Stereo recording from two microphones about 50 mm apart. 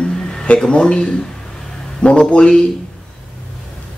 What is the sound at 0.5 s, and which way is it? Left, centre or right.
Speech, centre.